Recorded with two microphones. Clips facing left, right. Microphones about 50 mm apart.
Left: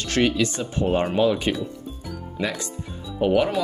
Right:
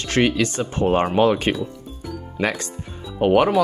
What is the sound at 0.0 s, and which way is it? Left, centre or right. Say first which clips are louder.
Speech: right 2 dB; right.